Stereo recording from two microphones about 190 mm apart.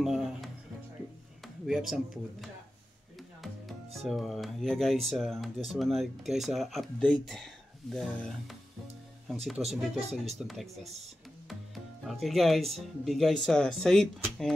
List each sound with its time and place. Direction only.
0.0 s music: centre (ahead or behind)
1.4 s speech: centre (ahead or behind)
3.2 s music: centre (ahead or behind)
4.1 s speech: centre (ahead or behind)
9.9 s speech: 35° right (ahead or behind)
10.4 s speech: centre (ahead or behind)